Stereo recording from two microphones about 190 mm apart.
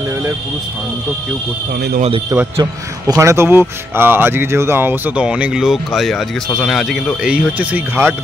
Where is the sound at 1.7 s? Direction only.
55° right (ahead or behind).